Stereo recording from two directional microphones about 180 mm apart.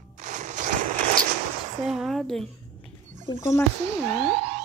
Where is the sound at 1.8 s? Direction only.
Centre (ahead or behind).